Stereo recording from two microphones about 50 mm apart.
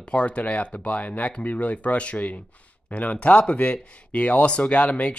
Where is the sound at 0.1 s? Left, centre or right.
Left.